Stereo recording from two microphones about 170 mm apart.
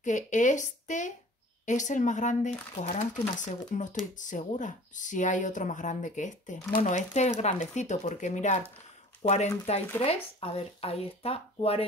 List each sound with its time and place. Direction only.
0.0 s speech: 45° left (ahead or behind)